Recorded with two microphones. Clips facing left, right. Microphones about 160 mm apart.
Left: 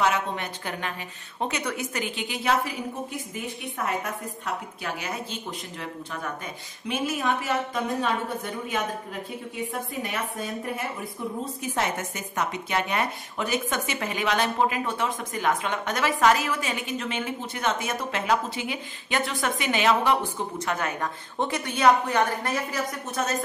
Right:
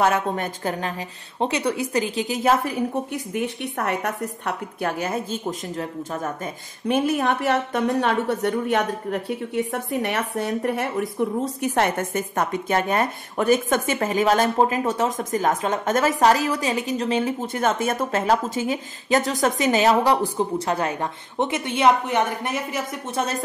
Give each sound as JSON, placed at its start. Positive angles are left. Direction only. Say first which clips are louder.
{"t": 0.0, "sound": "a woman's voice", "louder": "right 4 dB", "side_deg": -45}